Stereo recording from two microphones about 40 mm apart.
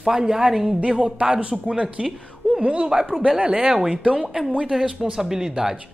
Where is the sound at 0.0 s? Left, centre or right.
Centre.